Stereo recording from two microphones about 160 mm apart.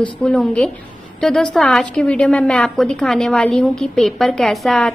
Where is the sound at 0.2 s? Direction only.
5° left (ahead or behind).